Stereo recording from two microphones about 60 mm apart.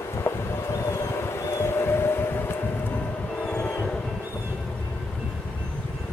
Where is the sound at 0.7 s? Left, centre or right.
Left.